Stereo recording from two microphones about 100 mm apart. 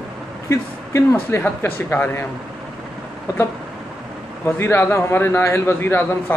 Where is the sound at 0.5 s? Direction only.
25° left (ahead or behind).